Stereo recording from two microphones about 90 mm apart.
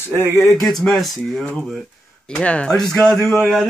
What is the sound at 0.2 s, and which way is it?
Speech, 30° right (ahead or behind).